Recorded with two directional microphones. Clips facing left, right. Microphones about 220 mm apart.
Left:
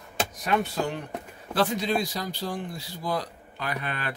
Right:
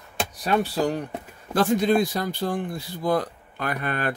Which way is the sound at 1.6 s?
50° right (ahead or behind).